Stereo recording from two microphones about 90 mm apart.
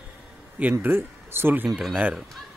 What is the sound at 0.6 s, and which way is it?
Speech, 20° right (ahead or behind).